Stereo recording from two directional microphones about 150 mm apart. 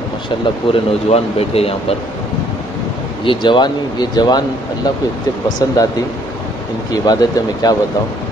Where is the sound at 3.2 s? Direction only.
35° left (ahead or behind).